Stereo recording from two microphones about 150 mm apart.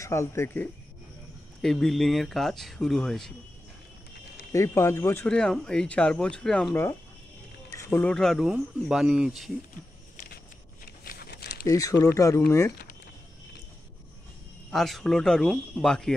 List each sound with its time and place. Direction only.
0.0 s speech: 20° left (ahead or behind)
1.6 s speech: centre (ahead or behind)
4.5 s speech: 20° left (ahead or behind)
5.3 s speech: 5° left (ahead or behind)
6.7 s speech: 15° left (ahead or behind)
8.1 s speech: 5° left (ahead or behind)
10.1 s walk: 80° left
11.1 s crumpling: 90° left
11.6 s speech: 20° left (ahead or behind)
14.7 s speech: centre (ahead or behind)